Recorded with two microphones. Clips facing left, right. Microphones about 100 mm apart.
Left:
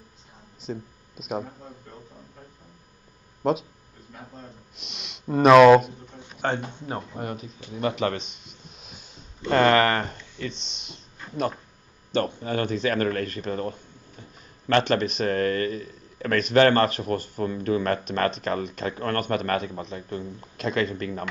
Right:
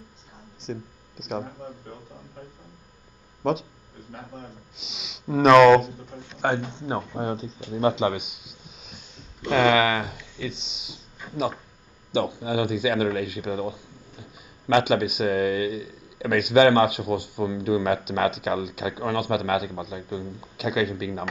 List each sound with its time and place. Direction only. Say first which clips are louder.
0.6 s speech: even; 5° left (ahead or behind)
3.4 s speech: left 1 dB; 5° left (ahead or behind)
4.7 s speech: right 1 dB; centre (ahead or behind)
6.4 s speech: right 2 dB; 15° right (ahead or behind)